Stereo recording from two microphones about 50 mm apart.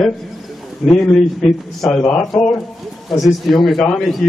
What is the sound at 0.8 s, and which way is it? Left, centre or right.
Speech, left.